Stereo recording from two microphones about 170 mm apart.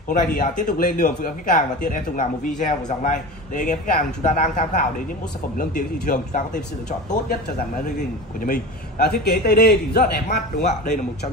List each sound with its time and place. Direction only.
0.1 s speech: 50° left (ahead or behind)
8.5 s a man's voice: 65° left (ahead or behind)